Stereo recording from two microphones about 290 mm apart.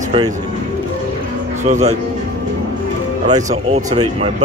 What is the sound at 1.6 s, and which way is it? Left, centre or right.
Speech, right.